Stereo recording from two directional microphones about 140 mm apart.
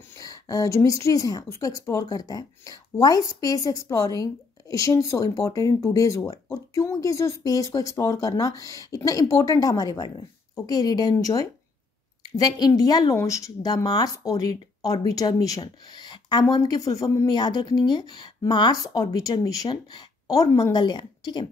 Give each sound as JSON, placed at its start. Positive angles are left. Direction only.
{"t": 0.2, "sound": "a woman's voice", "side_deg": 25}